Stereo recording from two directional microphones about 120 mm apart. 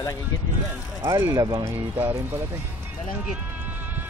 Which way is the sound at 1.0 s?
25° right (ahead or behind).